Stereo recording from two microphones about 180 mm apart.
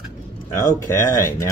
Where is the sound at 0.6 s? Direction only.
15° left (ahead or behind).